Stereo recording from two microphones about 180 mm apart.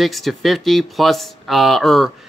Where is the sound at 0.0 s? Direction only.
Centre (ahead or behind).